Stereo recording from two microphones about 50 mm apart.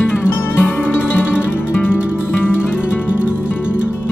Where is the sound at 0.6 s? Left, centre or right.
Left.